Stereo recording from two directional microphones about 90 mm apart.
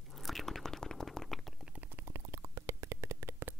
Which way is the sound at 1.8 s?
25° right (ahead or behind).